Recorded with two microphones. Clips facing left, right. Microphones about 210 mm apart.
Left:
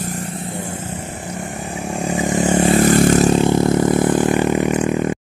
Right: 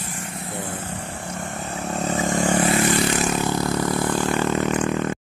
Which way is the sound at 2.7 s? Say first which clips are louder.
Left 8 dB; 45° left (ahead or behind).